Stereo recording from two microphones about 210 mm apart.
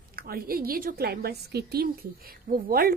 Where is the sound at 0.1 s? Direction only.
45° right (ahead or behind).